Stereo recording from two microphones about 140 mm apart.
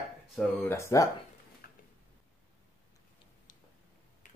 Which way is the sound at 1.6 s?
90° left.